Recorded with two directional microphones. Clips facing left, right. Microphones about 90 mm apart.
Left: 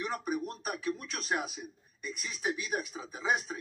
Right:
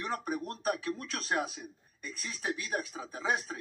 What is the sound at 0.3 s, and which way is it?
Speech, 15° left (ahead or behind).